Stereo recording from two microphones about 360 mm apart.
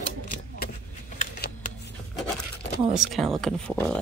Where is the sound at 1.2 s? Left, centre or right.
Left.